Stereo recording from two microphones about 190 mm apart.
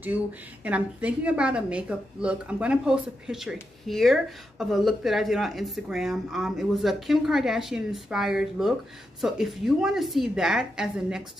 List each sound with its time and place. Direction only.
0.7 s a woman's voice: 5° right (ahead or behind)